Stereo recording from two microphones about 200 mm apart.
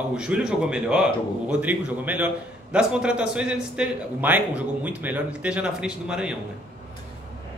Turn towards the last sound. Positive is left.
turn(degrees=-5)  # may be behind; listen again after turning